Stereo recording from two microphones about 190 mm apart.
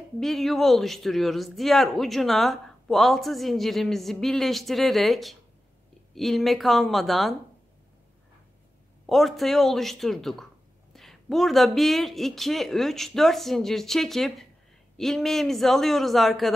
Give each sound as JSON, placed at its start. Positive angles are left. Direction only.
{"t": 0.2, "sound": "speech", "side_deg": 0}
{"t": 9.0, "sound": "speech", "side_deg": 0}